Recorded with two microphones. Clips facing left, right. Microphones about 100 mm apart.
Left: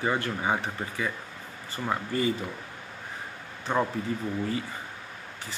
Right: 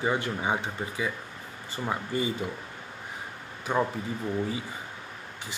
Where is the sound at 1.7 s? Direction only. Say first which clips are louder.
Left 1 dB; 20° right (ahead or behind).